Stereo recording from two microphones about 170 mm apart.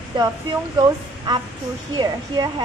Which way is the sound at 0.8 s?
25° right (ahead or behind).